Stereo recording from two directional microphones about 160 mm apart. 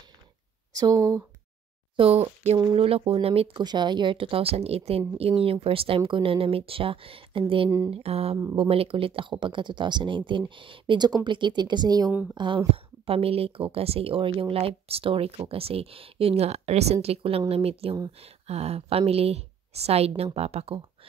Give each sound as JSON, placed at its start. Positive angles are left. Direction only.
{"t": 0.7, "sound": "speech", "side_deg": -20}
{"t": 2.0, "sound": "a woman's voice", "side_deg": -35}